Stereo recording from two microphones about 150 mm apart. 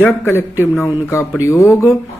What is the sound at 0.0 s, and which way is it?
A man's voice, 15° left (ahead or behind).